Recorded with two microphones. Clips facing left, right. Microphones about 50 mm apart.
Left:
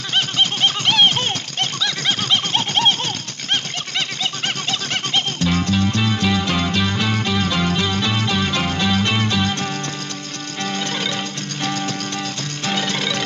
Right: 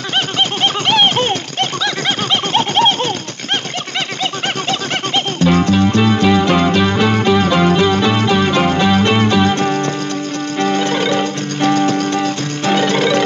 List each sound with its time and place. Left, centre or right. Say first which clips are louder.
0.4 s horse: right 2 dB; right
2.5 s a sound: right 9 dB; right
4.6 s music: right 5 dB; right